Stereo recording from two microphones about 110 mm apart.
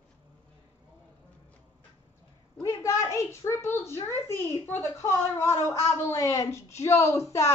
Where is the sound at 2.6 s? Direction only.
25° left (ahead or behind).